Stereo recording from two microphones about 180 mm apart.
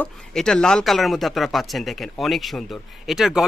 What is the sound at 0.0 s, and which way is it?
Speech, 5° left (ahead or behind).